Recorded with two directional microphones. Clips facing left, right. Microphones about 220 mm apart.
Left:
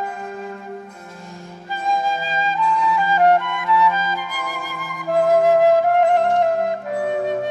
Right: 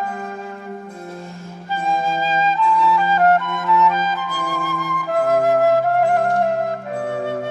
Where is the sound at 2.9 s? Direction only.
15° left (ahead or behind).